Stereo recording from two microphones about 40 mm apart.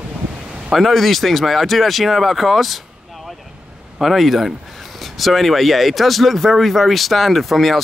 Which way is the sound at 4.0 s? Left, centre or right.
Centre.